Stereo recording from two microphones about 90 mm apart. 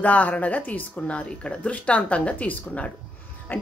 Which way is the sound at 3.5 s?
20° left (ahead or behind).